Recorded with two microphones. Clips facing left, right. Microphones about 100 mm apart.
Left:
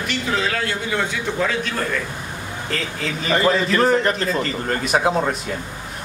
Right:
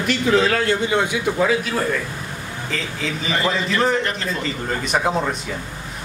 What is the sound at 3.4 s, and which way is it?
Speech, 35° left (ahead or behind).